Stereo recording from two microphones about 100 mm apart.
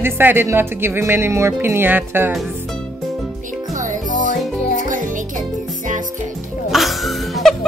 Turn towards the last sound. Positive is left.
turn(degrees=0)  # may be behind; listen again after turning